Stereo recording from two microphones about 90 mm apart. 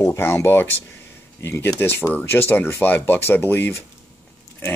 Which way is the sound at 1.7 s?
25° left (ahead or behind).